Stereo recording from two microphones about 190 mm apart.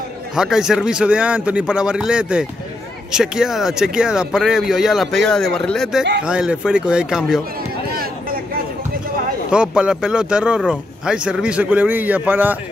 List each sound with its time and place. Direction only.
0.4 s speech: 5° right (ahead or behind)
7.9 s a sound: 50° right (ahead or behind)
9.5 s a man's voice: 5° right (ahead or behind)